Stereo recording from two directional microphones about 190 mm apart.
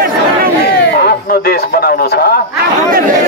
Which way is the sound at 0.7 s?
50° left (ahead or behind).